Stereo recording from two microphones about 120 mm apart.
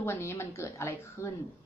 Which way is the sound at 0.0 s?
20° left (ahead or behind).